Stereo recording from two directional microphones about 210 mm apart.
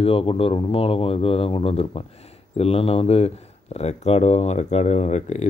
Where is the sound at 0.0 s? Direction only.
25° left (ahead or behind).